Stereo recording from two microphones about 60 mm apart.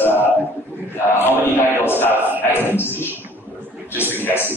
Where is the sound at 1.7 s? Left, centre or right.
Left.